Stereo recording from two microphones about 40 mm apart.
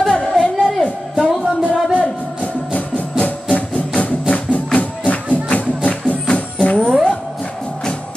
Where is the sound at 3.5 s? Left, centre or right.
Left.